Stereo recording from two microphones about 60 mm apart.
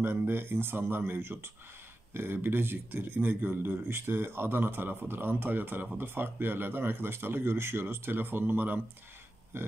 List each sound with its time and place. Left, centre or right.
0.0 s speech: right